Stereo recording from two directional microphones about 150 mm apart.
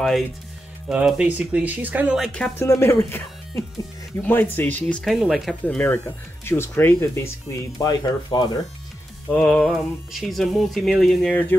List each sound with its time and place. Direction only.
0.8 s speech: 5° right (ahead or behind)
2.6 s speech: 20° left (ahead or behind); by 5.8 s centre (ahead or behind)
5.8 s speech: 15° left (ahead or behind)
9.3 s speech: 5° left (ahead or behind)